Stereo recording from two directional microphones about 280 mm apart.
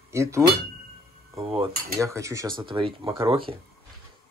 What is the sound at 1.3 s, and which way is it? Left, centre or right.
Cutlery, centre.